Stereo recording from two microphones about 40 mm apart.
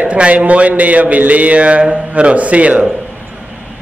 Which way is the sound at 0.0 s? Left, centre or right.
Right.